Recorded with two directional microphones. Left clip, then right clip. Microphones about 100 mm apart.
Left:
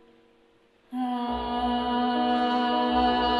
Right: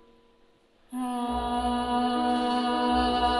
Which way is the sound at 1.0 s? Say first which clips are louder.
Even; 35° left (ahead or behind).